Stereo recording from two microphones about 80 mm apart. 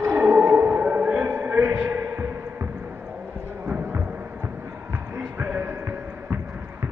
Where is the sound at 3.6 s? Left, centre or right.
Right.